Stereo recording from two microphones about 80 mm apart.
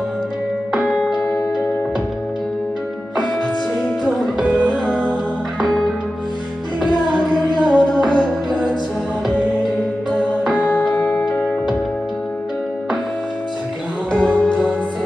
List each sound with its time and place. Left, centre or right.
0.8 s music: centre
4.4 s music: centre
4.8 s music: centre
7.5 s music: centre
10.5 s music: centre
14.1 s music: centre